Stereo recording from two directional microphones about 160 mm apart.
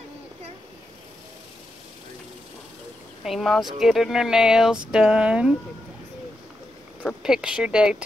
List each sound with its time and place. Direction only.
3.3 s speech: centre (ahead or behind)
7.2 s speech: 5° right (ahead or behind)